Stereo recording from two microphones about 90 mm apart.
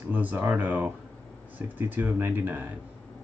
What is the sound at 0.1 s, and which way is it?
Speech, 20° right (ahead or behind).